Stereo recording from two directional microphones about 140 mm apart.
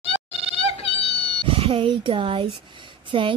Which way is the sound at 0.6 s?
45° left (ahead or behind).